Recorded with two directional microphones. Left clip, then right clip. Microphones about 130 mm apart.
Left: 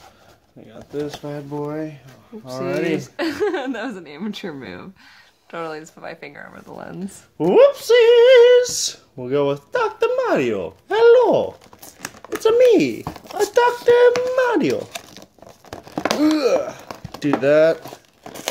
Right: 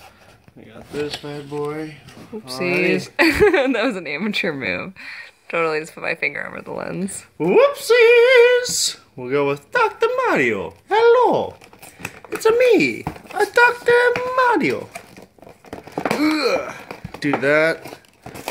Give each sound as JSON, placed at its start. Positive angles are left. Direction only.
{"t": 1.2, "sound": "speech", "side_deg": 75}
{"t": 2.4, "sound": "speech", "side_deg": 55}
{"t": 3.0, "sound": "speech", "side_deg": -25}
{"t": 7.3, "sound": "female singing", "side_deg": 50}
{"t": 12.4, "sound": "speech", "side_deg": 40}
{"t": 14.3, "sound": "a sound", "side_deg": 40}
{"t": 16.0, "sound": "a sound", "side_deg": 40}
{"t": 17.2, "sound": "speech", "side_deg": 35}